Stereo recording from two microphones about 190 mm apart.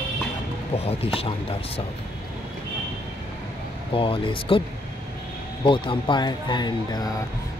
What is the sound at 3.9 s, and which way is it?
Speech, 30° left (ahead or behind).